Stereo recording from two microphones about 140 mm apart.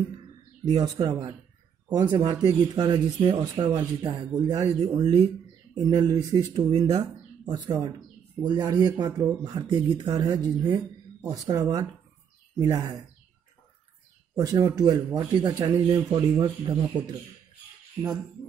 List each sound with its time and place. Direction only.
0.7 s speech: 30° right (ahead or behind)
4.4 s speech: 25° right (ahead or behind)
4.6 s speech: 35° right (ahead or behind)
14.3 s speech: 30° right (ahead or behind)